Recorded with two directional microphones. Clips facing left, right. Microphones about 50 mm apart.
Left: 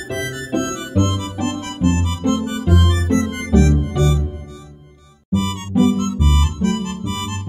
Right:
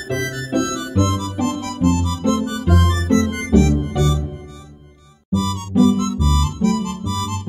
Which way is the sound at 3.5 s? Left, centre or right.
Left.